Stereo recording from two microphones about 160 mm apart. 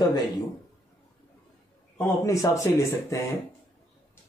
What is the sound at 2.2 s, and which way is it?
Speech, 20° left (ahead or behind).